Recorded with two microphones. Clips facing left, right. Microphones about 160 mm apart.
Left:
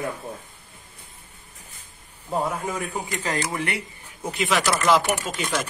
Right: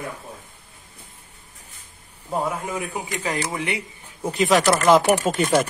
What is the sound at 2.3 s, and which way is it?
A man's voice, 5° right (ahead or behind).